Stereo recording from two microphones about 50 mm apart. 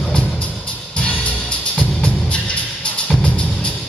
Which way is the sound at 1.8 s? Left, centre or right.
Left.